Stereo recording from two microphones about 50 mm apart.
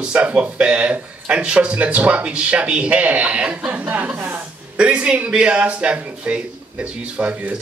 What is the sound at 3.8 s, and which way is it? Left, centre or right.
Speech, right.